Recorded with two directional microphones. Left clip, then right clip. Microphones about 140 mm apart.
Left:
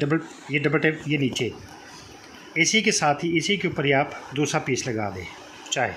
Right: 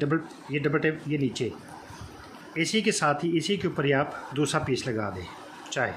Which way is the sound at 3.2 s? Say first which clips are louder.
Left 4 dB; 5° left (ahead or behind).